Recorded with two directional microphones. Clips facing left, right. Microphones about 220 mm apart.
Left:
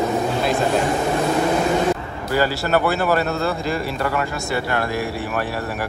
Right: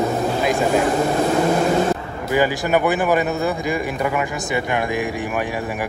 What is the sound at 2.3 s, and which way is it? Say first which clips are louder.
Speech: right 1 dB; 15° right (ahead or behind).